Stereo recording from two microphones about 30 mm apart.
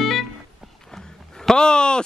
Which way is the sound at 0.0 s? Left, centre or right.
Centre.